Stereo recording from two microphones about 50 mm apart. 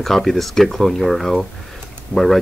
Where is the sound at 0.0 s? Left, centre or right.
Centre.